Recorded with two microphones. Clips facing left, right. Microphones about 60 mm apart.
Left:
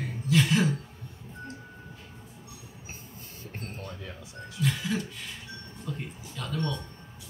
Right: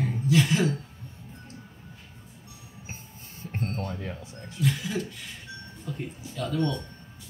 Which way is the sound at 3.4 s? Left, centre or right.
Right.